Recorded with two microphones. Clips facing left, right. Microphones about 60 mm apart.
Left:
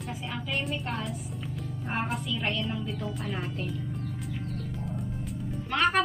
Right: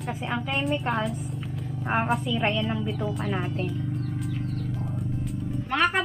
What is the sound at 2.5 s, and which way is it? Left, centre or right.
Speech, right.